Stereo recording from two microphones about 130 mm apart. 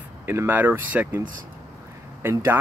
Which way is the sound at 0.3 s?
15° right (ahead or behind).